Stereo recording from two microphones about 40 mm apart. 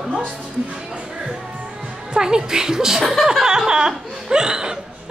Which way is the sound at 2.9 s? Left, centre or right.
Centre.